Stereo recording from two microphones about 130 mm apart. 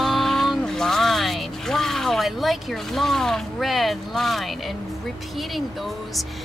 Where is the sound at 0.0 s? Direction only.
Centre (ahead or behind).